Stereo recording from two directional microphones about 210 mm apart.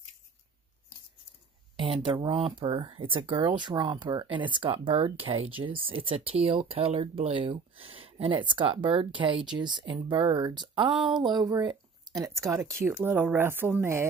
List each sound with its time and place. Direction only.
1.8 s speech: 25° right (ahead or behind)
10.9 s a sound: centre (ahead or behind)
11.3 s speech: 20° right (ahead or behind)